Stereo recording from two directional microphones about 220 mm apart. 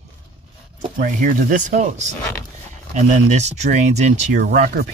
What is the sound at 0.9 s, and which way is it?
Speech, 40° right (ahead or behind).